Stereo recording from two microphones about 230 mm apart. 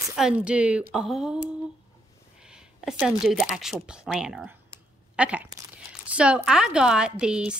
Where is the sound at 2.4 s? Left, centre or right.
Centre.